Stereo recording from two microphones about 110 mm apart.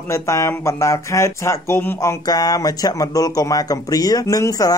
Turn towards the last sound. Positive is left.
turn(degrees=30)  # may be behind; listen again after turning